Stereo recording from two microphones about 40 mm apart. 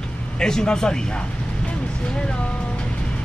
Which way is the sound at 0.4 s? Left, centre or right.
Centre.